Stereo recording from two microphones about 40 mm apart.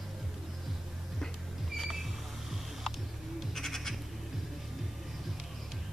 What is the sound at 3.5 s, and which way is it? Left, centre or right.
Goat, centre.